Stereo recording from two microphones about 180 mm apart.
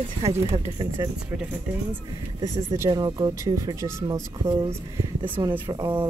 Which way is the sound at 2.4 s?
15° right (ahead or behind).